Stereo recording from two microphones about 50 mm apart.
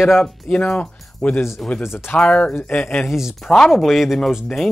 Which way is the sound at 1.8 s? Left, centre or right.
Left.